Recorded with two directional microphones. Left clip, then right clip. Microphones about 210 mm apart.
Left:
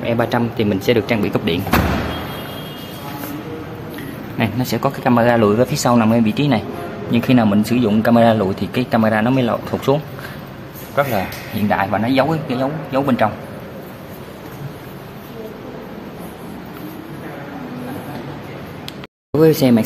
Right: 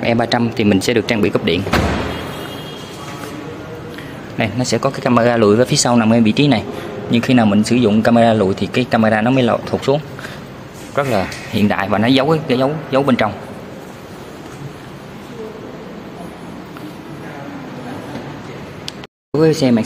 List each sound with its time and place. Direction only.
0.0 s speech: 20° right (ahead or behind)
4.4 s a man's voice: 15° right (ahead or behind)
9.7 s speech: centre (ahead or behind)
11.0 s a man's voice: 30° right (ahead or behind)
19.6 s speech: 5° left (ahead or behind)